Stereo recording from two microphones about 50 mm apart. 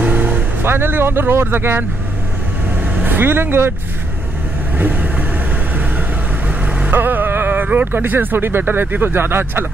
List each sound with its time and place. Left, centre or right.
0.0 s vehicle: right
0.6 s speech: right
3.0 s speech: right
6.9 s speech: right